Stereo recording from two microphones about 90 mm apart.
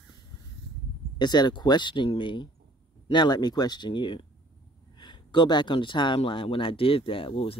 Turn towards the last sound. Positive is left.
turn(degrees=90)